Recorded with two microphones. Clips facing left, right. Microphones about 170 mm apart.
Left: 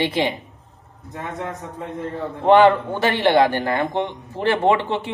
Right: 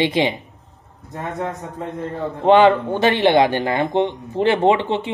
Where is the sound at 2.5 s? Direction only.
20° right (ahead or behind).